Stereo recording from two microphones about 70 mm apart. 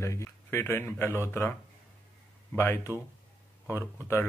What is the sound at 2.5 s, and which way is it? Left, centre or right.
Speech, left.